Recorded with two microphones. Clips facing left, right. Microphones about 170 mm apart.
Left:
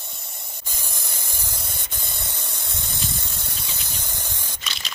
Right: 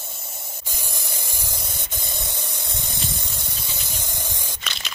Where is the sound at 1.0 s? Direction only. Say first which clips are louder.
Right 3 dB; 60° right (ahead or behind).